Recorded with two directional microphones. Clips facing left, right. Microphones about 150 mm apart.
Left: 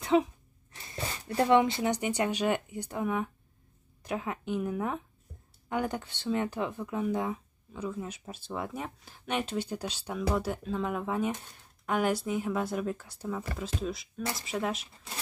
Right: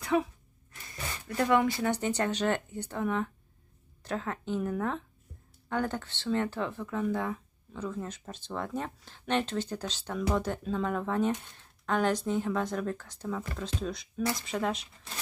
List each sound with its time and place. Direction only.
0.0 s speech: 25° left (ahead or behind); by 14.9 s 5° left (ahead or behind)